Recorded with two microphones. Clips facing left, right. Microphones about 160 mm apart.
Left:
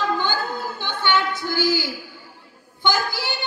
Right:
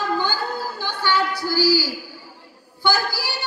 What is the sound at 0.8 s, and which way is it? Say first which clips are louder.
Speech: even; 20° left (ahead or behind).